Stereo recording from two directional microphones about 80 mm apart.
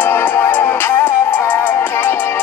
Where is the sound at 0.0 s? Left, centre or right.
Left.